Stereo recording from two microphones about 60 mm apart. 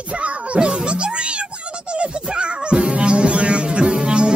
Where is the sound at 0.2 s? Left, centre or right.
Centre.